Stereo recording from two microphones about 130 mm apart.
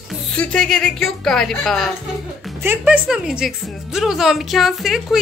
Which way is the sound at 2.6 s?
15° right (ahead or behind).